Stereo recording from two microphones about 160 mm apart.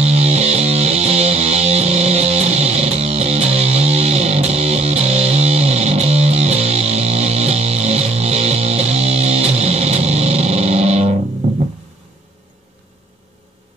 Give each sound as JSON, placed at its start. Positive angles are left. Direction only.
{"t": 0.0, "sound": "music", "side_deg": -40}